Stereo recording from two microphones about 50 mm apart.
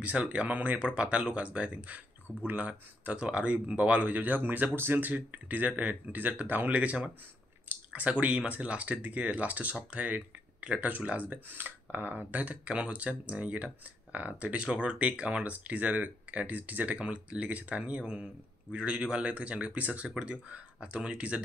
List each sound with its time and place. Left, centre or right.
0.0 s speech: right
6.7 s speech: right
20.1 s speech: centre